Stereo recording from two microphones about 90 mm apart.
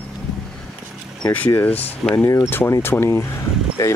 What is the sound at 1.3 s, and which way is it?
Speech, 20° left (ahead or behind).